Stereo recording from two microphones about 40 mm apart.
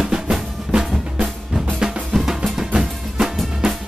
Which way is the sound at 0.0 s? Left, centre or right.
Centre.